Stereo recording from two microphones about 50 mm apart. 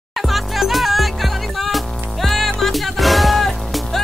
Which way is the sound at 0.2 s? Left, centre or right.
Centre.